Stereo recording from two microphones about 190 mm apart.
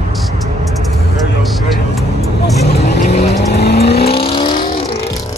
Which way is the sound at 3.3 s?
60° left (ahead or behind).